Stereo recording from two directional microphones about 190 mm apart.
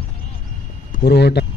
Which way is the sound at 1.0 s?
60° left (ahead or behind).